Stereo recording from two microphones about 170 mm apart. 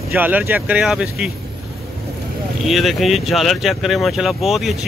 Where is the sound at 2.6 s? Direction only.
Centre (ahead or behind).